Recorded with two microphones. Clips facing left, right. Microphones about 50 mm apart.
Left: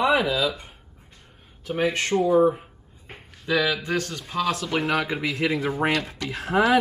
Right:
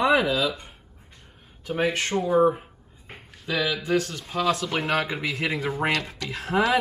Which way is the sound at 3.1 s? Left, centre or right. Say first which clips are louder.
Left 4 dB; centre.